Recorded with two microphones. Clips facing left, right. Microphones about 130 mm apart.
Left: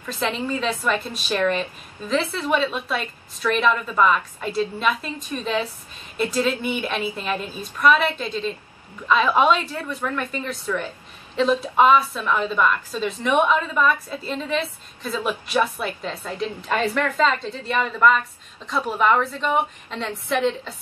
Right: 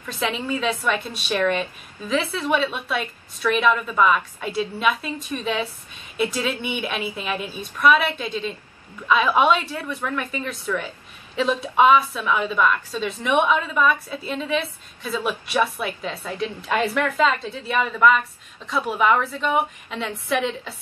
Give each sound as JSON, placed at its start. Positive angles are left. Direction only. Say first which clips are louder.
{"t": 0.0, "sound": "a woman's voice", "louder": "left 1 dB", "side_deg": 0}